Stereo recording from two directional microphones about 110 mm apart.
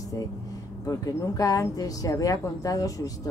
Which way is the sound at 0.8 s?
35° left (ahead or behind).